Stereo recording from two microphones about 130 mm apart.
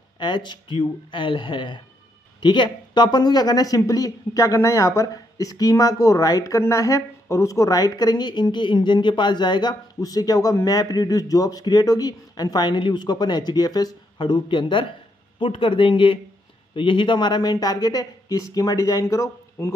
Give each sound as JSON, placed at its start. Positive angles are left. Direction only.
{"t": 0.2, "sound": "speech", "side_deg": 35}